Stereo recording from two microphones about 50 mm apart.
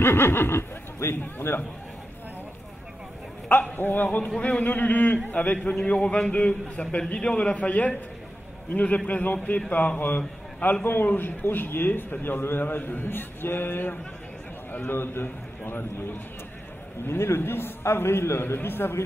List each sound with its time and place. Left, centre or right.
0.0 s speech: left
3.7 s a man's voice: left
5.7 s a man's voice: centre; by 18.9 s left